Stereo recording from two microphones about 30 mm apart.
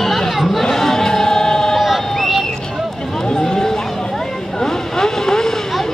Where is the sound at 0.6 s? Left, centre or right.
Centre.